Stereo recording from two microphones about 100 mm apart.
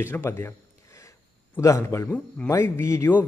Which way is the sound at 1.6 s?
30° left (ahead or behind).